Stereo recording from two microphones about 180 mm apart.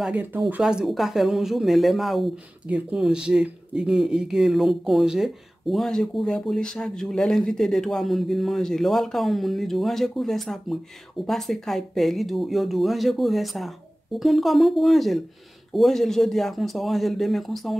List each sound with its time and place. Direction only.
0.0 s speech: 10° right (ahead or behind)